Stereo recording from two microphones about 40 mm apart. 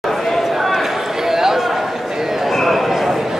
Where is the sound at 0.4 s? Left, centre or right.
Centre.